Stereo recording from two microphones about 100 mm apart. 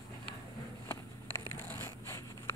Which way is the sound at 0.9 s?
25° left (ahead or behind).